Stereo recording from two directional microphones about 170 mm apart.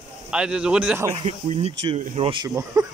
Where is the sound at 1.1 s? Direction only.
40° right (ahead or behind); by 2.8 s 25° right (ahead or behind).